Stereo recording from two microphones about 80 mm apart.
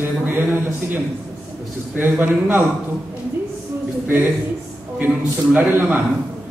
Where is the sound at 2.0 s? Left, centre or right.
Right.